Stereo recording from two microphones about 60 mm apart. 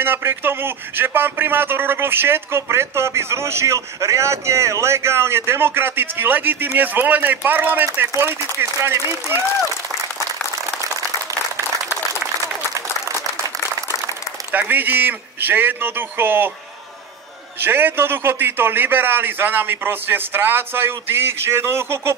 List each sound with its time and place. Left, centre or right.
0.0 s a man's voice: right
14.5 s a man's voice: right
17.6 s a man's voice: right